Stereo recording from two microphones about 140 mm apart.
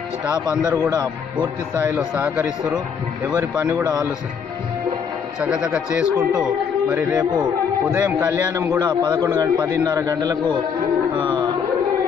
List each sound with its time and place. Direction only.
0.3 s speech: 25° right (ahead or behind)
2.0 s a man's voice: 15° right (ahead or behind)
3.3 s speech: 25° right (ahead or behind)
5.4 s a man's voice: 10° right (ahead or behind)
8.7 s speech: 30° right (ahead or behind)